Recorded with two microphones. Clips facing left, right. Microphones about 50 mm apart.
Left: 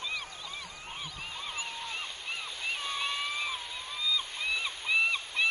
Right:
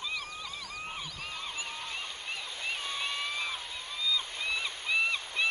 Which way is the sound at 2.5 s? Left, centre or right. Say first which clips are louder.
Left 1 dB; centre.